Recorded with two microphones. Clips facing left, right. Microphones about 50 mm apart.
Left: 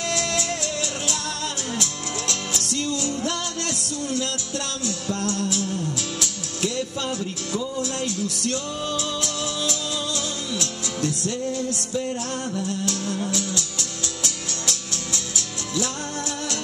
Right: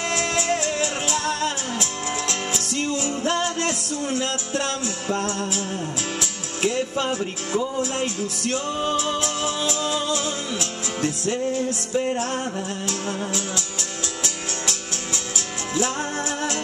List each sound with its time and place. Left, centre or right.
0.1 s music: right